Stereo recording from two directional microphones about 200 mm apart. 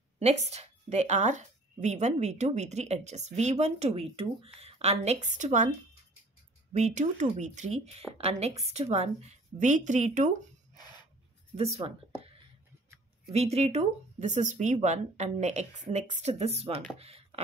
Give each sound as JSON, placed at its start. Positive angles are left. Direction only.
{"t": 0.2, "sound": "a woman's voice", "side_deg": -35}
{"t": 6.7, "sound": "a woman's voice", "side_deg": -35}
{"t": 11.5, "sound": "a woman's voice", "side_deg": -30}
{"t": 13.3, "sound": "a woman's voice", "side_deg": -30}
{"t": 17.0, "sound": "a sound", "side_deg": -30}